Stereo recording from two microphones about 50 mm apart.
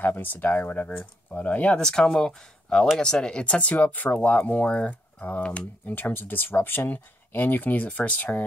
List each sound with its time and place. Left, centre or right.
0.0 s speech: left
1.4 s speech: left
1.8 s speech: centre; by 8.5 s left